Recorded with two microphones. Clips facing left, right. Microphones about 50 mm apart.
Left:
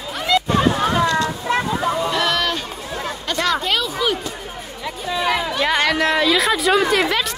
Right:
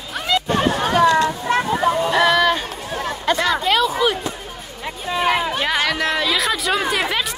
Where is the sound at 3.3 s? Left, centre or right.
Centre.